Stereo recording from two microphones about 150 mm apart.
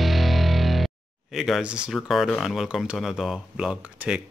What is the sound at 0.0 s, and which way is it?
Speech, centre (ahead or behind).